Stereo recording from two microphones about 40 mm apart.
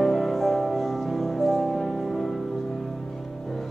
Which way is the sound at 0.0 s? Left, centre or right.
Centre.